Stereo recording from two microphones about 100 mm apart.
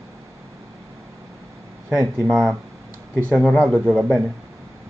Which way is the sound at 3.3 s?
5° left (ahead or behind).